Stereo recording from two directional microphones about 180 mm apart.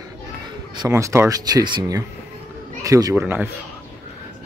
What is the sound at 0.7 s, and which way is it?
Speech, 15° right (ahead or behind).